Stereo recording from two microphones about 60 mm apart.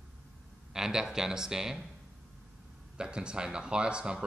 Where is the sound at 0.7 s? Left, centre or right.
Centre.